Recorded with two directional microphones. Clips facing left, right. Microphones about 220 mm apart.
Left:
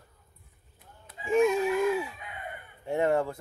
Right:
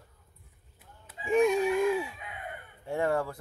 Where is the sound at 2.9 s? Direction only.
20° left (ahead or behind).